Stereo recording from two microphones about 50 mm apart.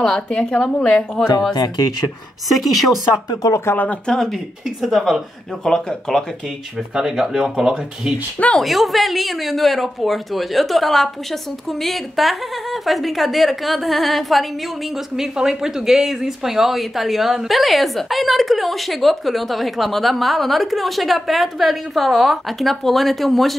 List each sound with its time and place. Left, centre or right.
0.0 s a woman's voice: centre
3.4 s speech: left
3.7 s speech: left
4.1 s speech: centre
4.6 s speech: centre
5.6 s speech: centre
7.0 s speech: centre
15.1 s speech: centre